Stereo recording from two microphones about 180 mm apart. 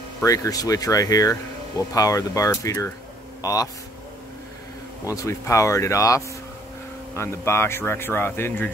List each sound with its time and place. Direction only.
0.2 s speech: 20° left (ahead or behind)
5.0 s speech: 15° left (ahead or behind)